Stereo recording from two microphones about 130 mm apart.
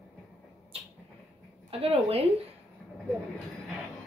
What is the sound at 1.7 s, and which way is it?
Speech, 50° right (ahead or behind).